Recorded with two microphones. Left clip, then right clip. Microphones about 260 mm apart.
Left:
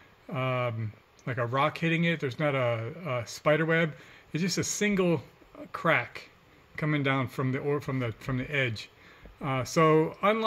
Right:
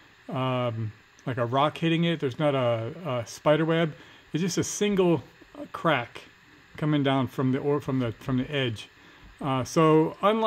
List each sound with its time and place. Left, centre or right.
0.3 s speech: right